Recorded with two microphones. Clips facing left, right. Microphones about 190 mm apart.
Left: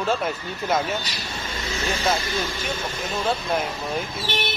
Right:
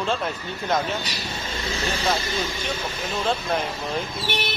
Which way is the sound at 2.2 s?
20° right (ahead or behind).